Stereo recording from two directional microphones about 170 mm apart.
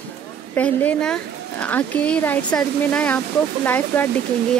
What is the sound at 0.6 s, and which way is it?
Speech, 5° left (ahead or behind).